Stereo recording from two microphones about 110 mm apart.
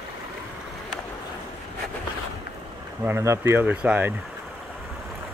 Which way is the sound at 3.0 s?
25° right (ahead or behind).